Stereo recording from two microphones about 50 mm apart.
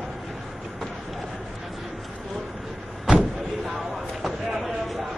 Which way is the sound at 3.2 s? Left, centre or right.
Centre.